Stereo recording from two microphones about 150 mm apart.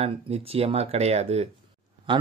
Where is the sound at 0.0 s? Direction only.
40° right (ahead or behind).